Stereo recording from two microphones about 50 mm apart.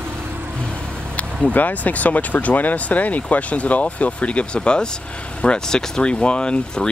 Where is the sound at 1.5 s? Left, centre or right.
Left.